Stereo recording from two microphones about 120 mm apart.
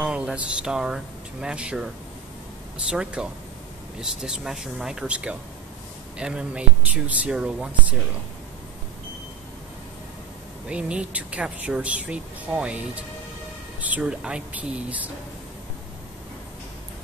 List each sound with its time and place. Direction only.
0.0 s speech: 5° right (ahead or behind)
2.9 s speech: 5° right (ahead or behind)
10.7 s speech: 10° right (ahead or behind)